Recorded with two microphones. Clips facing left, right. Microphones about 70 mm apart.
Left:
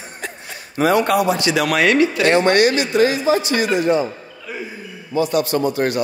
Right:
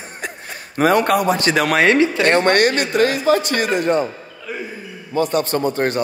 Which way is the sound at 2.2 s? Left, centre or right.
Right.